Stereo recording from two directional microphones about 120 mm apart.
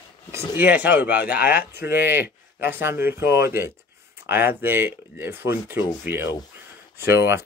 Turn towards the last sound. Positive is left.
turn(degrees=-20)  # may be behind; listen again after turning